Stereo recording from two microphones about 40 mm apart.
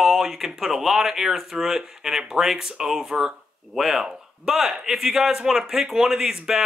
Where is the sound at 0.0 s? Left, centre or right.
Centre.